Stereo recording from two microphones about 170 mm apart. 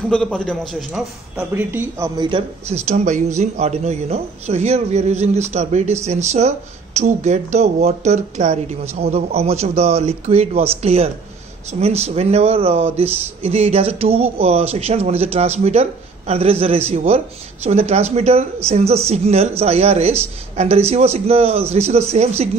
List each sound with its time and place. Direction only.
0.1 s a man's voice: 5° left (ahead or behind)
1.3 s speech: 10° right (ahead or behind); by 2.4 s 25° right (ahead or behind)
2.7 s speech: 40° right (ahead or behind)